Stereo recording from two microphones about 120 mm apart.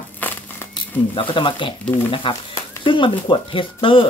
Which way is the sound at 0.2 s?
15° left (ahead or behind).